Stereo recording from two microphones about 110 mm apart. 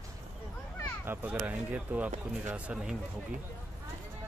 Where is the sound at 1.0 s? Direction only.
20° right (ahead or behind).